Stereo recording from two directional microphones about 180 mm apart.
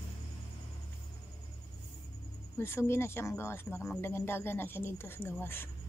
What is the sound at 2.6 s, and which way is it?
Speech, 15° left (ahead or behind).